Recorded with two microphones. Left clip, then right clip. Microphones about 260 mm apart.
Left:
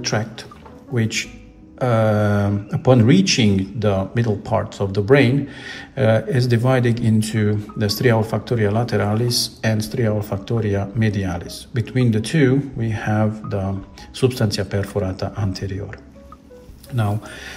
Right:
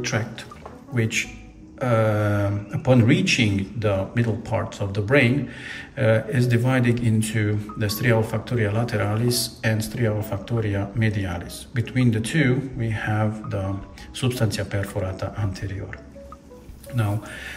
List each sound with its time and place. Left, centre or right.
0.0 s speech: centre
1.8 s speech: centre
16.9 s speech: centre